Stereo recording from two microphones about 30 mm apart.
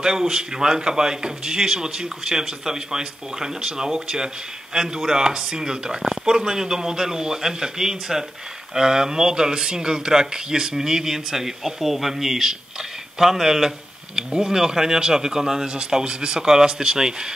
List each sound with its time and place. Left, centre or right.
0.0 s speech: right
15.7 s speech: right
16.4 s speech: centre